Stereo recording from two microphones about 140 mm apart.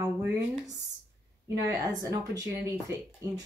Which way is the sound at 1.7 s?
25° right (ahead or behind).